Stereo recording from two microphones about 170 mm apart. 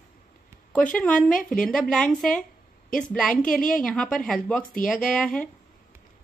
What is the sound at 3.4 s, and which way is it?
Speech, 55° left (ahead or behind).